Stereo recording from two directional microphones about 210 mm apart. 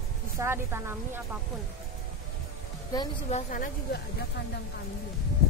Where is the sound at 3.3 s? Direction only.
35° left (ahead or behind).